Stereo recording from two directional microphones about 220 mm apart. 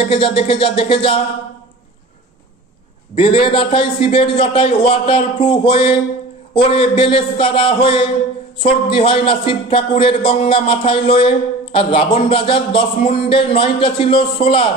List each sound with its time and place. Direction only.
0.0 s a man's voice: 25° left (ahead or behind)
3.2 s a man's voice: 25° left (ahead or behind)